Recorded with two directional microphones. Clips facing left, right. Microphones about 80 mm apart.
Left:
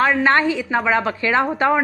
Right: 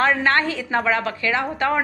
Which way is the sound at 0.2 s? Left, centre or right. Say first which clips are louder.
Left 3 dB; centre.